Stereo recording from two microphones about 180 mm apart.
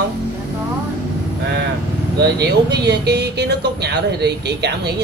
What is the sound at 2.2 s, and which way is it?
Speech, 70° right (ahead or behind).